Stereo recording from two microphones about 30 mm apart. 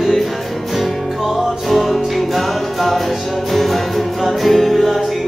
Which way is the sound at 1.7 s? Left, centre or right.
Centre.